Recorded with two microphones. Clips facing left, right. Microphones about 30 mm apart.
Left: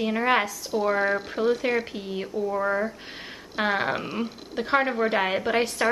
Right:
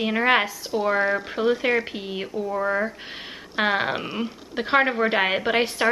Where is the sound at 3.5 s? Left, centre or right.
Right.